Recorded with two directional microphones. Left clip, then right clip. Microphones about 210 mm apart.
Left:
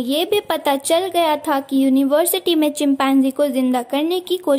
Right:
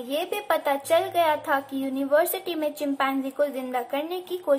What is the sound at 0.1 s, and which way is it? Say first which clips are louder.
A woman's voice: left 6 dB; 50° left (ahead or behind).